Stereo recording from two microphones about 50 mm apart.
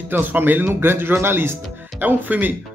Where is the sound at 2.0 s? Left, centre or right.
Right.